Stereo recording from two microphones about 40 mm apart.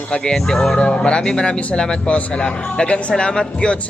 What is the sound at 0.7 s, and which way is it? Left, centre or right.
Speech, left.